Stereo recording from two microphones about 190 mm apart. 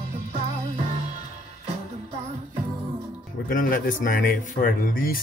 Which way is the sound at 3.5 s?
45° left (ahead or behind).